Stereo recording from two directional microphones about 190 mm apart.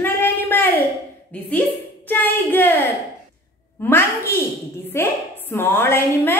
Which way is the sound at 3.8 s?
10° left (ahead or behind).